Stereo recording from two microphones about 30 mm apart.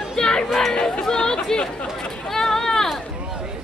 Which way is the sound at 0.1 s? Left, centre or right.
Left.